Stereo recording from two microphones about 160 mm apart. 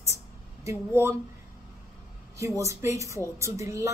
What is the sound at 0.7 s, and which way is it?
Speech, 15° right (ahead or behind).